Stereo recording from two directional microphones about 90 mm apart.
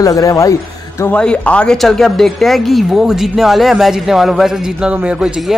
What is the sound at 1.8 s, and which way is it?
A man's voice, centre (ahead or behind).